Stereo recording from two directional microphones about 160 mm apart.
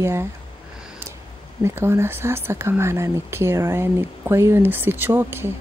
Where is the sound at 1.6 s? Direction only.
15° right (ahead or behind).